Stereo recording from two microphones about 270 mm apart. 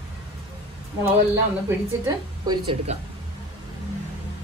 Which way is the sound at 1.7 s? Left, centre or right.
Centre.